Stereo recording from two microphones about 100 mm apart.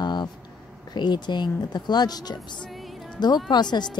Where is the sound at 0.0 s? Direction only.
45° left (ahead or behind).